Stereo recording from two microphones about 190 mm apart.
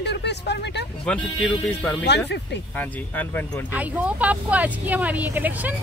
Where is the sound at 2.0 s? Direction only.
65° left (ahead or behind).